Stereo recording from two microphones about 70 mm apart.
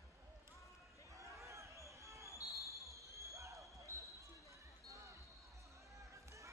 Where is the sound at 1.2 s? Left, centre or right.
Right.